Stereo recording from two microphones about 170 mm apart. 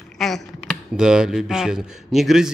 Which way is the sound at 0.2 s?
Centre (ahead or behind).